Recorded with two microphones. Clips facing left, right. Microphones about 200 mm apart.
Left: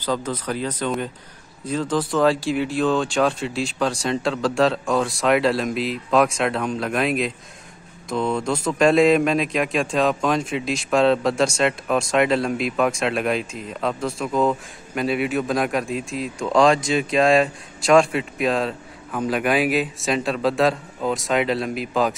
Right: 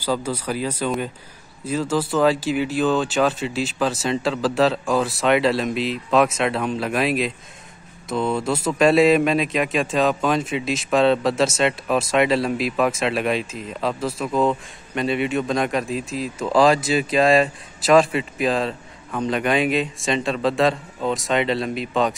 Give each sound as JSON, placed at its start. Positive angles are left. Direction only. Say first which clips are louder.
{"t": 0.0, "sound": "speech", "louder": "right 1 dB", "side_deg": -10}